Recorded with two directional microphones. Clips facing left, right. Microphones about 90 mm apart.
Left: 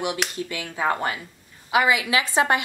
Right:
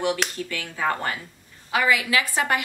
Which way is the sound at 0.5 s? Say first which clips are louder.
Left 2 dB; 20° left (ahead or behind).